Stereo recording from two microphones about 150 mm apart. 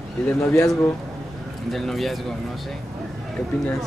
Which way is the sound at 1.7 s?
Centre (ahead or behind).